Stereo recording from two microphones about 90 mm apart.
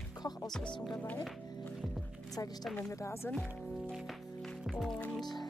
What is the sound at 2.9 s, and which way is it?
Speech, 30° left (ahead or behind).